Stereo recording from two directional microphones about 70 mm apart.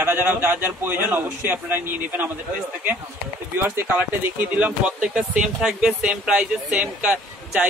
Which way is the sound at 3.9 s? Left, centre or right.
Right.